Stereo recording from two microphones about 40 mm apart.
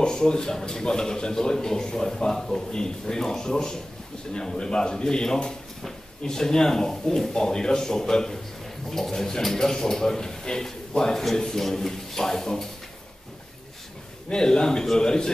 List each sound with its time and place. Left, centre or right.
0.0 s speech: centre
14.3 s speech: centre